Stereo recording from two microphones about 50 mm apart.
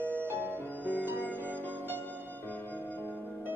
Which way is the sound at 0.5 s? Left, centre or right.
Left.